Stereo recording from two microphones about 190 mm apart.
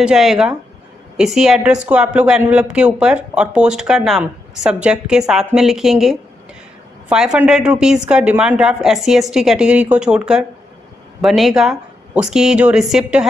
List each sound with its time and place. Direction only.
0.0 s speech: centre (ahead or behind)